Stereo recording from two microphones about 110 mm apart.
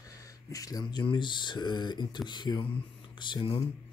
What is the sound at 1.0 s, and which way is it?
A man's voice, 45° left (ahead or behind).